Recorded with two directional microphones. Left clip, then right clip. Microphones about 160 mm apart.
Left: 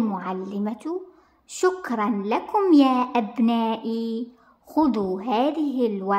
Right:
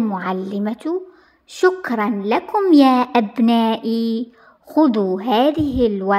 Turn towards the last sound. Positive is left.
turn(degrees=-15)  # may be behind; listen again after turning